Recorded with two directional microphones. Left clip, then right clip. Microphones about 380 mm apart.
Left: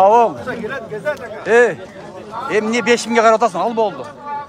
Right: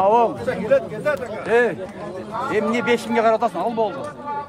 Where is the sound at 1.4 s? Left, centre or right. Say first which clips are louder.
Left 6 dB; left.